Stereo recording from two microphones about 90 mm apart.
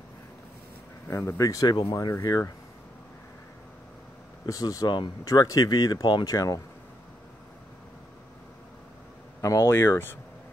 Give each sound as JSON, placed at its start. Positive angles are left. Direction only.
{"t": 1.0, "sound": "speech", "side_deg": 30}
{"t": 4.5, "sound": "speech", "side_deg": 45}
{"t": 6.3, "sound": "speech", "side_deg": 40}
{"t": 9.4, "sound": "speech", "side_deg": 35}